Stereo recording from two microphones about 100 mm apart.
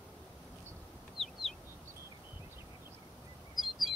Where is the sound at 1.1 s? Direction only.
Centre (ahead or behind).